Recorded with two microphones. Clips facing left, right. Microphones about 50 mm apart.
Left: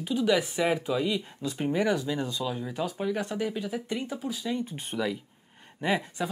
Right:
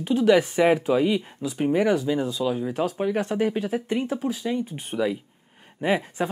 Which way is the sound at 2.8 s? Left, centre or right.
Right.